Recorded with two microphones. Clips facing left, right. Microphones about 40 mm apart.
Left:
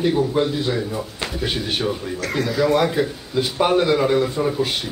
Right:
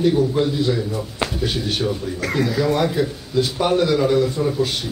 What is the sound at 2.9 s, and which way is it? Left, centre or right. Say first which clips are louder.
Speech: right 1 dB; centre.